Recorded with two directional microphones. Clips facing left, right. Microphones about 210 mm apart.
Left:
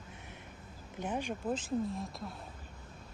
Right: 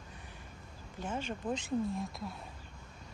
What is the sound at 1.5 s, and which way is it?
Speech, centre (ahead or behind).